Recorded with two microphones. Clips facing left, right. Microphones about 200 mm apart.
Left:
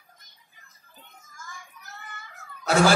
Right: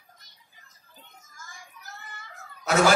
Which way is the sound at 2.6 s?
30° left (ahead or behind).